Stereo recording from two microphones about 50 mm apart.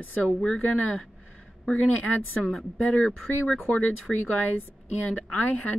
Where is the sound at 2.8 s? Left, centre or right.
Left.